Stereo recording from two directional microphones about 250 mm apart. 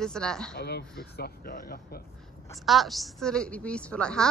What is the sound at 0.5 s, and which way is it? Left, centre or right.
Speech, left.